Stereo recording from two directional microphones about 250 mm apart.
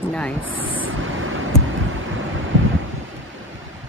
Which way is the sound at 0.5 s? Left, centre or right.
Right.